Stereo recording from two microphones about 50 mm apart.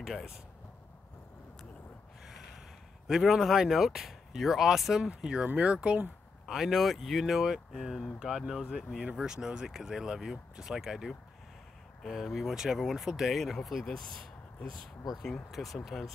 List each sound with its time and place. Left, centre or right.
0.0 s speech: centre
3.1 s speech: centre
5.1 s speech: centre
6.4 s speech: centre
12.0 s speech: centre
14.8 s speech: centre